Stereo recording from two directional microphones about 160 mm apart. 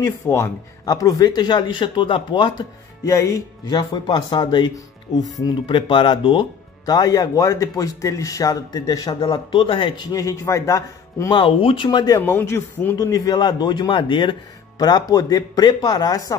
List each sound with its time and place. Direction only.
0.0 s speech: 20° left (ahead or behind)
3.1 s speech: 20° left (ahead or behind)
12.2 s speech: 10° left (ahead or behind)